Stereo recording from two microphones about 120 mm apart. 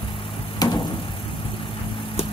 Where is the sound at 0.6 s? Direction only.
35° left (ahead or behind).